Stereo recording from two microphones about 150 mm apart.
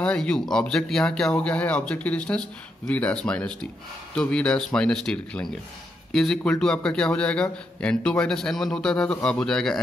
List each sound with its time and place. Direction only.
0.0 s a man's voice: 5° left (ahead or behind)